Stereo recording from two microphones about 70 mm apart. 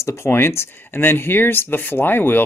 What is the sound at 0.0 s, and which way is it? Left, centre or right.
Speech, left.